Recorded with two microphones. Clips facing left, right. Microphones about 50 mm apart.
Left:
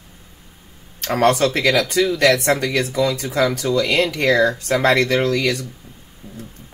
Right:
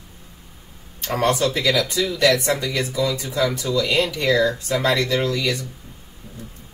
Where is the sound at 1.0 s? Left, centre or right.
Left.